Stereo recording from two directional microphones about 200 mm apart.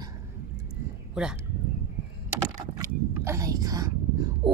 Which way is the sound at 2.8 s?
15° right (ahead or behind).